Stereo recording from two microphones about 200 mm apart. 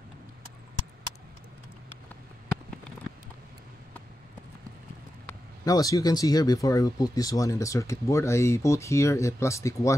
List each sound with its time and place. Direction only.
5.7 s speech: 20° left (ahead or behind)